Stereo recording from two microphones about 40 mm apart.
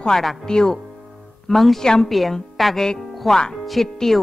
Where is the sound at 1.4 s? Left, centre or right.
Centre.